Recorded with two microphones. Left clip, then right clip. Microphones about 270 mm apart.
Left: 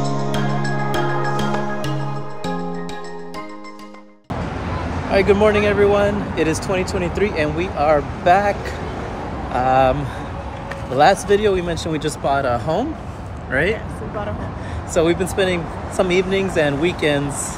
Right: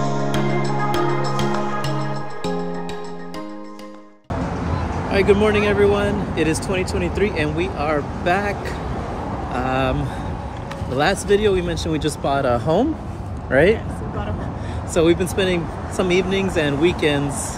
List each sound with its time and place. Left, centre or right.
0.3 s music: centre
5.1 s speech: centre
11.0 s speech: centre; by 13.7 s right
15.0 s speech: centre